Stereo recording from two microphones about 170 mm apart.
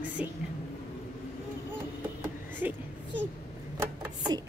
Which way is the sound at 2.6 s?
10° right (ahead or behind).